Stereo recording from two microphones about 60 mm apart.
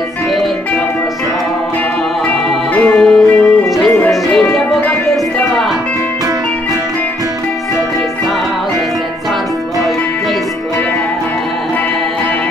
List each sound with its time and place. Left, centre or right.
2.2 s music: left